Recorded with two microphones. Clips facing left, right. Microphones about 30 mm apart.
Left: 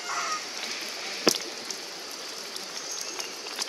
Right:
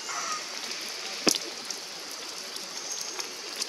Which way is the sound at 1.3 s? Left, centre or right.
Centre.